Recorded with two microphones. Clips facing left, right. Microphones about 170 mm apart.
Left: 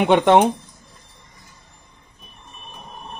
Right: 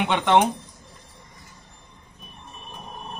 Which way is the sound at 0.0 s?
45° left (ahead or behind).